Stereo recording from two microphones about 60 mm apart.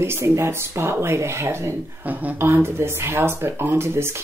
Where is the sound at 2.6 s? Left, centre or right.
Right.